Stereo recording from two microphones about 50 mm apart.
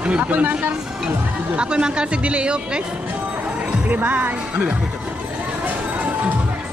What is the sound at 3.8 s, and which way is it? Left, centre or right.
Speech, right.